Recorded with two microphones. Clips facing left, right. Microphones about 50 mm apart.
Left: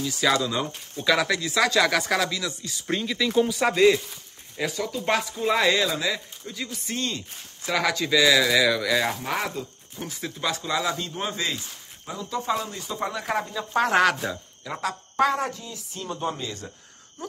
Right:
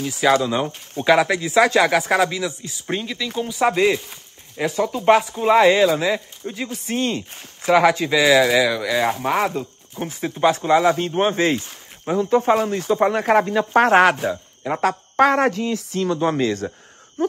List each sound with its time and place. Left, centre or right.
0.1 s speech: right
2.7 s speech: centre
3.7 s speech: centre
4.6 s speech: right; by 9.2 s centre
9.5 s speech: right
13.8 s speech: right
17.2 s a sound: right